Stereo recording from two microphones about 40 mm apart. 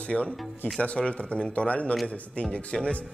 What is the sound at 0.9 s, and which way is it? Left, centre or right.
Speech, left.